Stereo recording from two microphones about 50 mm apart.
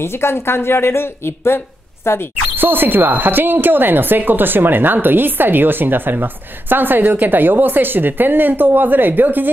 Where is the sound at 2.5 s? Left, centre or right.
Right.